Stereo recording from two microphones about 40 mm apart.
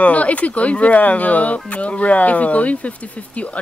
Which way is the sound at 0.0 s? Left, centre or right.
Left.